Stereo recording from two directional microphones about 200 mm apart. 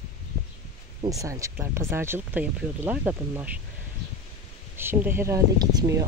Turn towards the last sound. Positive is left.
turn(degrees=-20)  # may be behind; listen again after turning